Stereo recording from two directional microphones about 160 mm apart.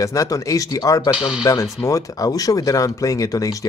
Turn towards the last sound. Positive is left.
turn(degrees=20)  # may be behind; listen again after turning